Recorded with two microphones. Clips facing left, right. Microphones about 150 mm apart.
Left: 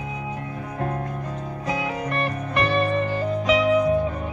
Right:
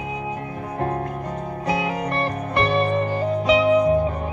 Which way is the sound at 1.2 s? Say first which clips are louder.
Right 3 dB; 50° right (ahead or behind).